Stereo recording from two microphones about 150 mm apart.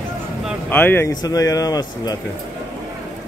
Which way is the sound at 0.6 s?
15° left (ahead or behind).